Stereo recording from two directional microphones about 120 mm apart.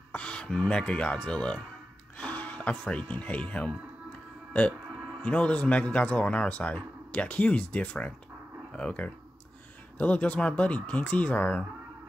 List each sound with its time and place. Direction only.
0.1 s speech: 10° left (ahead or behind)
5.2 s speech: 10° left (ahead or behind)